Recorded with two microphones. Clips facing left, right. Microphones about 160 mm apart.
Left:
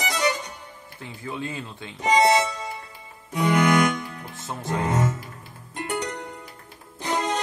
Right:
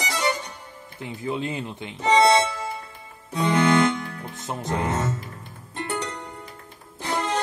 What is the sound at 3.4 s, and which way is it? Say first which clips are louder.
Music: even; 15° left (ahead or behind).